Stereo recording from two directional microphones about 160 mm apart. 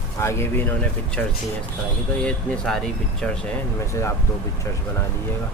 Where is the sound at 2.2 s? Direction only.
5° left (ahead or behind).